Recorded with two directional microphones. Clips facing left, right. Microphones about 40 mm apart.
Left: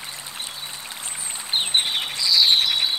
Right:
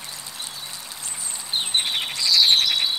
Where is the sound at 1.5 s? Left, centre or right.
Left.